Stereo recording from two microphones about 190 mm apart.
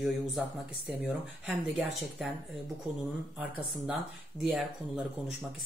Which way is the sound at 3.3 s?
5° right (ahead or behind).